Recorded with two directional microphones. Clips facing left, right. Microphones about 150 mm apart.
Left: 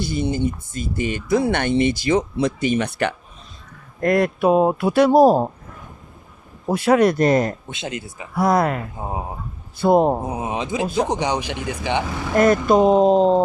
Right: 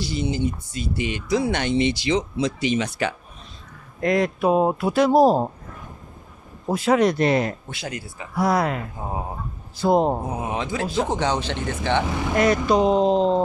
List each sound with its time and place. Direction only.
0.0 s speech: 55° left (ahead or behind)
6.7 s speech: 70° left (ahead or behind)
7.2 s speech: 45° left (ahead or behind)
7.6 s speech: 20° left (ahead or behind)
8.4 s a man's voice: 50° left (ahead or behind)
10.2 s speech: 20° left (ahead or behind)
12.4 s speech: 50° left (ahead or behind)